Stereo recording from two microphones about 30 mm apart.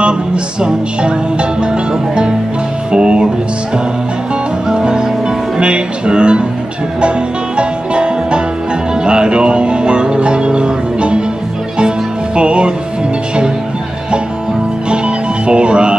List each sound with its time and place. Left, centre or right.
0.6 s music: right
4.6 s music: right
12.4 s music: right
14.9 s music: right